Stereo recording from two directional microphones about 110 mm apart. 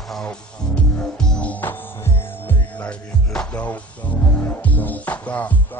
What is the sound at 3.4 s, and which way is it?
Music, 10° left (ahead or behind).